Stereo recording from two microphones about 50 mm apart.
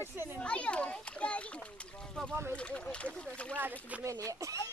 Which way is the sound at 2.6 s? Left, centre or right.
Left.